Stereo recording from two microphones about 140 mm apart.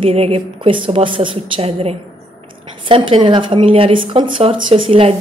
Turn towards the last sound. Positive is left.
turn(degrees=-40)  # may be behind; listen again after turning